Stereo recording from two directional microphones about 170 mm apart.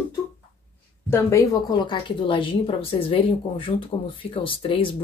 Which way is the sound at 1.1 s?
20° left (ahead or behind).